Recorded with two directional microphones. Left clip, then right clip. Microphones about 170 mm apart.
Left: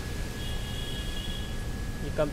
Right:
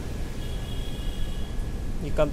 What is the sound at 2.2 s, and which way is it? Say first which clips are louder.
Speech: right 4 dB; 15° right (ahead or behind).